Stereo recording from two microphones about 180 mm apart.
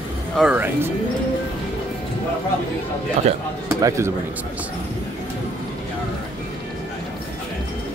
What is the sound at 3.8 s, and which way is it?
Speech, 15° right (ahead or behind).